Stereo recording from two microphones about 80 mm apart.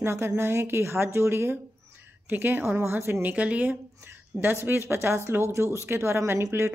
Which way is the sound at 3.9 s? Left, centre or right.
Right.